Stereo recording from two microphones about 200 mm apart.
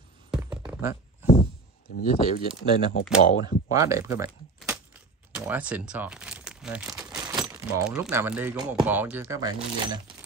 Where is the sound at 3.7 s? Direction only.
15° right (ahead or behind).